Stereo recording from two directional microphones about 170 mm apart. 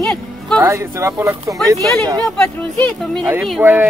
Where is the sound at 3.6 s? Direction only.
10° right (ahead or behind).